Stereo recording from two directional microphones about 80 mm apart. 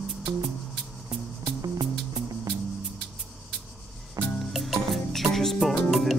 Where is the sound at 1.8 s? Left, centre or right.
Right.